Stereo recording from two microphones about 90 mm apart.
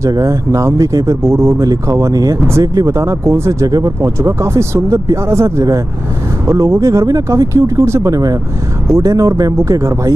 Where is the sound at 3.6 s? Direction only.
40° right (ahead or behind).